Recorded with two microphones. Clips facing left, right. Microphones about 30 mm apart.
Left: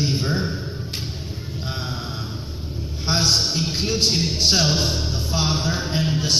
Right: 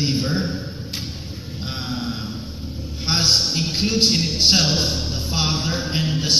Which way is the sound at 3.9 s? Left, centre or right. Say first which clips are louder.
Right 2 dB; right.